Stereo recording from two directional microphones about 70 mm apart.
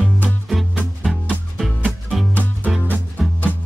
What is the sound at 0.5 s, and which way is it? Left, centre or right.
Music, centre.